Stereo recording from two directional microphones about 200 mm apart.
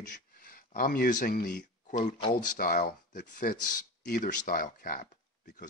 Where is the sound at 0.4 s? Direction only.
45° left (ahead or behind).